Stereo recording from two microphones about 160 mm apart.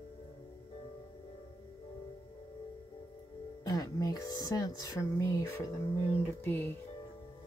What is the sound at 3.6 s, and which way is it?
Speech, 20° left (ahead or behind).